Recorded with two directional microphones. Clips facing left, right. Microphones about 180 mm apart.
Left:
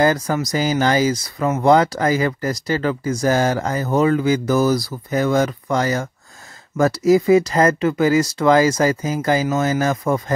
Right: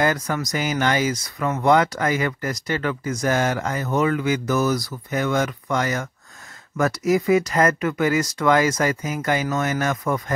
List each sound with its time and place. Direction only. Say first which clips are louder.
0.0 s speech: left 5 dB; 30° left (ahead or behind)